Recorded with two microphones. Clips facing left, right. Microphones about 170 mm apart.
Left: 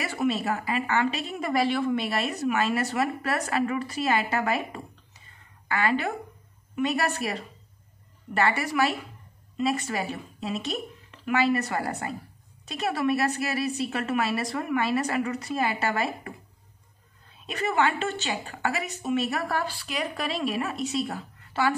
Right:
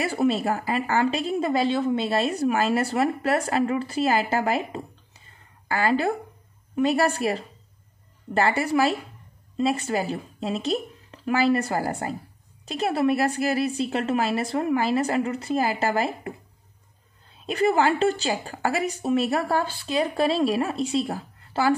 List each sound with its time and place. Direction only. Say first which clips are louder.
0.0 s a woman's voice: right 4 dB; 35° right (ahead or behind)
17.5 s a woman's voice: right 5 dB; 35° right (ahead or behind)